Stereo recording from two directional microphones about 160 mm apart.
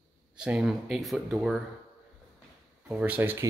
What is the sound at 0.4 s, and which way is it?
Speech, 5° right (ahead or behind).